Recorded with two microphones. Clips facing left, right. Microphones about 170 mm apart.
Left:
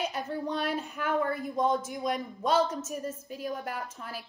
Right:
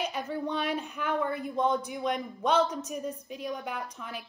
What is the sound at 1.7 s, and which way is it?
Speech, 45° left (ahead or behind).